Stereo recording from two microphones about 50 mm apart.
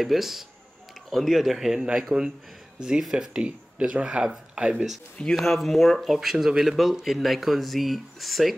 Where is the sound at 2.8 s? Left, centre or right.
Centre.